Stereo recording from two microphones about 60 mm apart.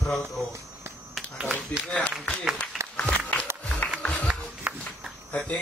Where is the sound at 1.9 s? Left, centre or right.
Left.